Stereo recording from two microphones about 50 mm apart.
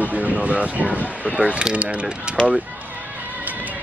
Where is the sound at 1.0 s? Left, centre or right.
Right.